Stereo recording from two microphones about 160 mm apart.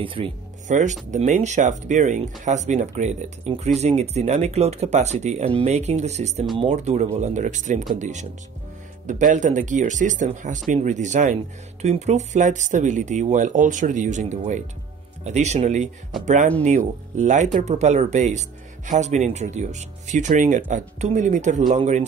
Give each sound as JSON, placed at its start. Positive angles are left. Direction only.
{"t": 0.0, "sound": "speech", "side_deg": -35}
{"t": 0.7, "sound": "speech", "side_deg": -50}